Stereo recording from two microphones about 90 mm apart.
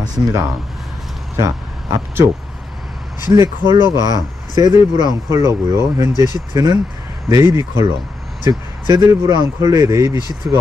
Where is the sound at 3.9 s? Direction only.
40° right (ahead or behind).